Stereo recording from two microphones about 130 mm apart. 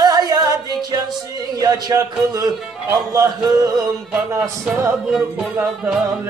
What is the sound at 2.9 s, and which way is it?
Music, 30° right (ahead or behind).